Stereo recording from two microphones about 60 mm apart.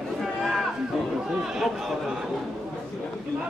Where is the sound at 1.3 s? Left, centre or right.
Centre.